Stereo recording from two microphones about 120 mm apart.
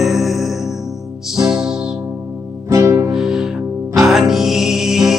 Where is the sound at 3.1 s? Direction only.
5° right (ahead or behind).